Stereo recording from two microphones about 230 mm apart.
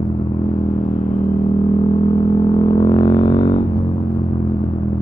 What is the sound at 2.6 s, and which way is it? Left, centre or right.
Didgeridoo, centre.